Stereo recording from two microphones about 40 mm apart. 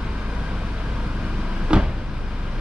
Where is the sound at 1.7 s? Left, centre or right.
Right.